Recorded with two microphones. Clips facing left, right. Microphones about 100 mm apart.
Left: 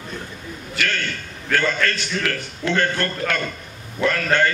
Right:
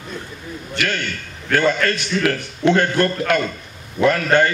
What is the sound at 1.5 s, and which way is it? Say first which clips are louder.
A man's voice: right 4 dB; 15° right (ahead or behind).